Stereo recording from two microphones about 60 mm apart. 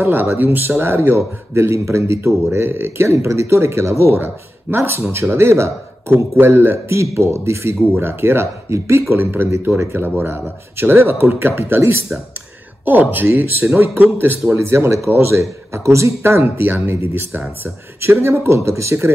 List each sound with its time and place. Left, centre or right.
0.0 s speech: right
8.6 s speech: right
9.1 s speech: right
12.8 s speech: right
16.2 s speech: right